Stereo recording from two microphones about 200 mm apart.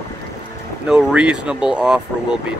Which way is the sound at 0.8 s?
5° right (ahead or behind).